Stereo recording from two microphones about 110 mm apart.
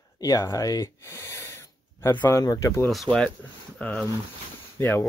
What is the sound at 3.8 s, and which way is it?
Speech, 15° left (ahead or behind).